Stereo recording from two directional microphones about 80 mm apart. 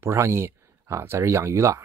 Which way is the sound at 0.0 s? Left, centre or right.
Right.